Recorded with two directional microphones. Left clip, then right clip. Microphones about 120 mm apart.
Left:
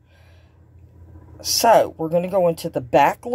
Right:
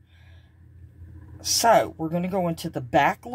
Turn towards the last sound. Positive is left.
turn(degrees=25)  # may be behind; listen again after turning